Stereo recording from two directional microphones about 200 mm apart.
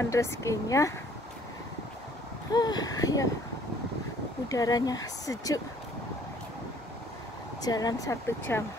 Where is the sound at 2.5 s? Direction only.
20° left (ahead or behind).